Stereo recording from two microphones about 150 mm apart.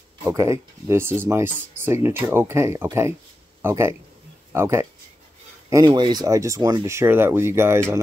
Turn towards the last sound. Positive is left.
turn(degrees=-15)  # may be behind; listen again after turning